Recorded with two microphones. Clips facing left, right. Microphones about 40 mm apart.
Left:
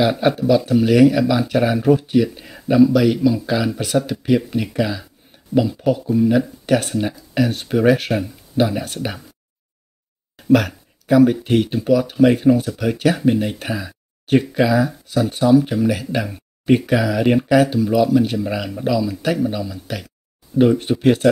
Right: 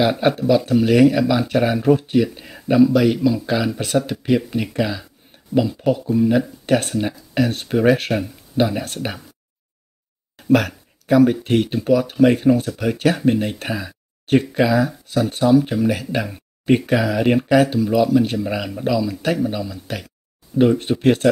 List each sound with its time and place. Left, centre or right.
0.0 s speech: centre
6.0 s speech: centre
9.0 s speech: centre
10.5 s speech: centre
13.7 s speech: centre